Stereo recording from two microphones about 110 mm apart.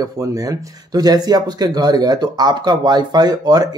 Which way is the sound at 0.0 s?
30° right (ahead or behind).